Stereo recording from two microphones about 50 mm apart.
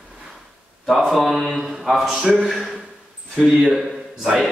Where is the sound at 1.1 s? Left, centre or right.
Centre.